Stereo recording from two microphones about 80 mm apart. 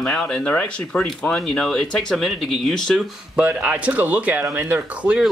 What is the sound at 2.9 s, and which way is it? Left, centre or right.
Speech, centre.